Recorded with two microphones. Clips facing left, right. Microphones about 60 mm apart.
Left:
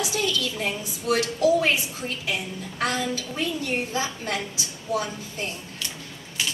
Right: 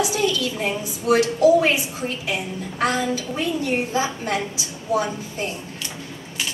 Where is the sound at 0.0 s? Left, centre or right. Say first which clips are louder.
Right 5 dB; right.